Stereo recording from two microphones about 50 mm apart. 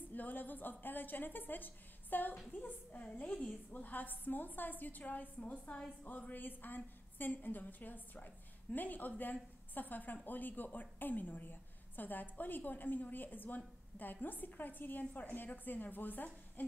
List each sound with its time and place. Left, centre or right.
0.1 s a woman's voice: left
2.9 s a woman's voice: left
5.4 s a woman's voice: left